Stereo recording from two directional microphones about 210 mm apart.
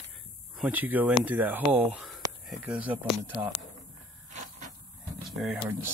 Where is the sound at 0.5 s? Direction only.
10° right (ahead or behind).